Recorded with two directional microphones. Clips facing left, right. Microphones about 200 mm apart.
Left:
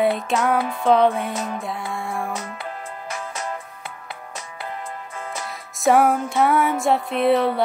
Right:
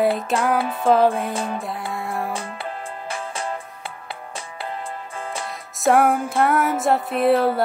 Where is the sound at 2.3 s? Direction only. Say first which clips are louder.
Right 1 dB; 30° right (ahead or behind).